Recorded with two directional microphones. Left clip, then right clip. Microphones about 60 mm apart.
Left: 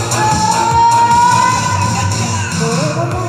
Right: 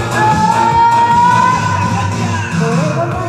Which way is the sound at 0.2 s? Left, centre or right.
Centre.